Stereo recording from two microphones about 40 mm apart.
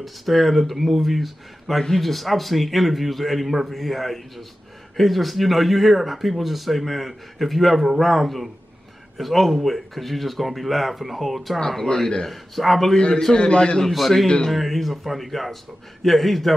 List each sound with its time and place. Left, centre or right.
0.0 s speech: centre
11.6 s speech: centre
12.3 s speech: centre
12.9 s a man's voice: left
13.9 s speech: centre
14.2 s speech: centre
14.5 s speech: centre